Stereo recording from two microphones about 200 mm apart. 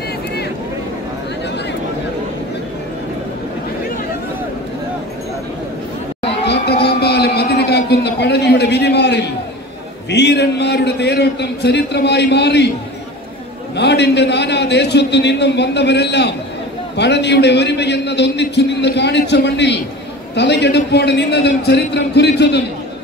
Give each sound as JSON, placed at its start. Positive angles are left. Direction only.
{"t": 6.4, "sound": "a sound", "side_deg": 55}
{"t": 10.0, "sound": "a man's voice", "side_deg": 60}
{"t": 13.7, "sound": "a man's voice", "side_deg": 60}